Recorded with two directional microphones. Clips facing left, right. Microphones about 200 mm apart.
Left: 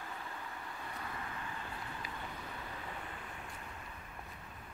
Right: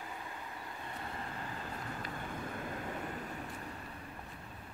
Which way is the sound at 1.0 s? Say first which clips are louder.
Right 2 dB; 35° right (ahead or behind).